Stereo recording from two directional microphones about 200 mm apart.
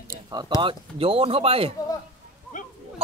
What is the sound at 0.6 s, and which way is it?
Speech, 30° right (ahead or behind).